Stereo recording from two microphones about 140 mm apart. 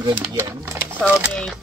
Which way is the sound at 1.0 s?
10° right (ahead or behind).